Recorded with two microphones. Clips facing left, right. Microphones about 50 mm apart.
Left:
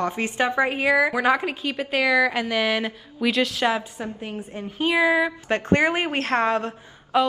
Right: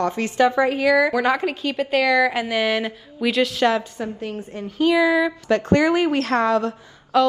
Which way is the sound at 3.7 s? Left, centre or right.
Centre.